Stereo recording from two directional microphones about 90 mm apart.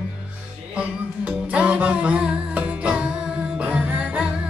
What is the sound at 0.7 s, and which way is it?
Music, 10° right (ahead or behind).